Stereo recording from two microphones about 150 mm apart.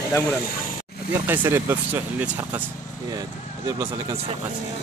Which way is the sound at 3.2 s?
25° right (ahead or behind).